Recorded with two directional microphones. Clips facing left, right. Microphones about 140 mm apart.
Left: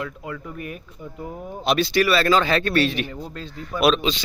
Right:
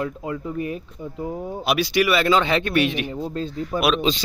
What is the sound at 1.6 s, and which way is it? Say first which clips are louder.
A man's voice: left 1 dB; 10° right (ahead or behind).